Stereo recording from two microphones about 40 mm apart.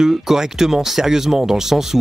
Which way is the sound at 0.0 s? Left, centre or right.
Centre.